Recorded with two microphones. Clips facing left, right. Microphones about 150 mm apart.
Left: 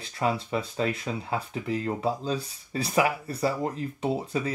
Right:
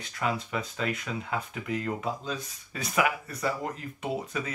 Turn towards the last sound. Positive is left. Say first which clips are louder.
# left 4 dB
turn(degrees=30)  # may be behind; listen again after turning